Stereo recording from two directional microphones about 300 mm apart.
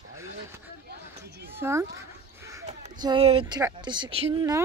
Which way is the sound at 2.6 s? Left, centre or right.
Centre.